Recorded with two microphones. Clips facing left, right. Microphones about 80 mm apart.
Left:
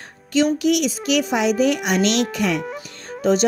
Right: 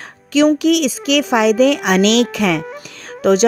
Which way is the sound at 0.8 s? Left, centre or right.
Right.